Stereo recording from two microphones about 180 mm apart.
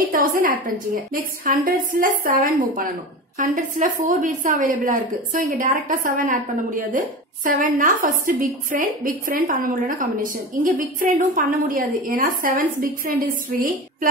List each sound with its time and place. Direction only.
0.1 s a woman's voice: 50° right (ahead or behind)